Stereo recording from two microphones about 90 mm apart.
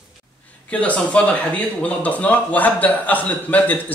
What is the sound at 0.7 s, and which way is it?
Speech, 15° left (ahead or behind).